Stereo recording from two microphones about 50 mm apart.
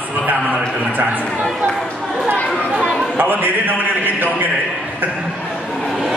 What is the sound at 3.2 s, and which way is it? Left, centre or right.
Speech, right.